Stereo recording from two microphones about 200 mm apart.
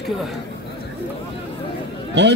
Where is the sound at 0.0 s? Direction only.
Centre (ahead or behind).